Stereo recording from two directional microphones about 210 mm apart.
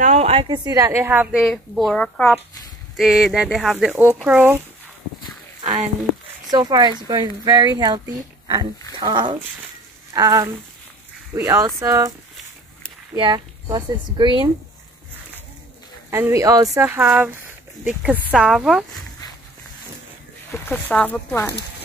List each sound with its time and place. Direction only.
0.0 s a woman's voice: 30° right (ahead or behind); by 4.6 s 5° right (ahead or behind)
5.6 s speech: 35° right (ahead or behind)
6.5 s a woman's voice: 20° right (ahead or behind)
13.1 s speech: 20° right (ahead or behind)
16.1 s a woman's voice: 10° right (ahead or behind)
20.5 s speech: 10° left (ahead or behind)